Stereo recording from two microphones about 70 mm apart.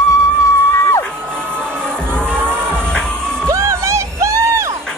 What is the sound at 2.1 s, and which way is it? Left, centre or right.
Music, centre.